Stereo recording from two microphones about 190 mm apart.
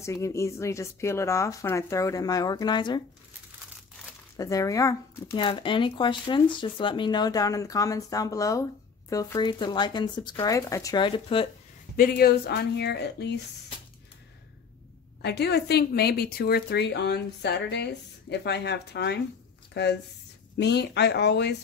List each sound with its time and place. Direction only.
0.0 s speech: 15° left (ahead or behind)
4.4 s speech: 20° left (ahead or behind)
12.0 s a woman's voice: 55° left (ahead or behind)
15.2 s a woman's voice: 60° left (ahead or behind)